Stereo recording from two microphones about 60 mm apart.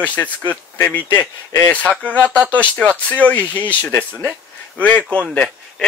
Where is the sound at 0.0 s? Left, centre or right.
Left.